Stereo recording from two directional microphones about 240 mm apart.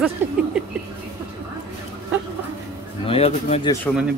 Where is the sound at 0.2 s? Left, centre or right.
Centre.